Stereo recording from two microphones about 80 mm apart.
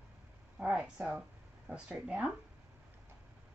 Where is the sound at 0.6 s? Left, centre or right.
Centre.